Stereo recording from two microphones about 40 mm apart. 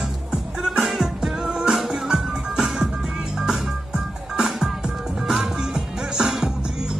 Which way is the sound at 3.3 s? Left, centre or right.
Centre.